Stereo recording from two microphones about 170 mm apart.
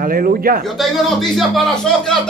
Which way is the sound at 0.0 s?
55° right (ahead or behind).